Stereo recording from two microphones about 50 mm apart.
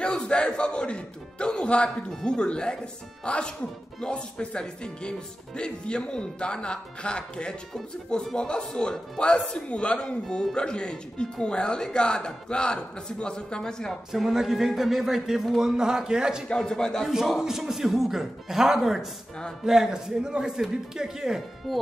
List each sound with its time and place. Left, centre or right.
0.0 s a man's voice: centre
14.1 s a man's voice: centre
16.4 s speech: centre
17.4 s a man's voice: centre